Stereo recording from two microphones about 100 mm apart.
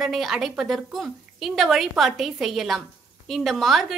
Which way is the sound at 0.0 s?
5° right (ahead or behind).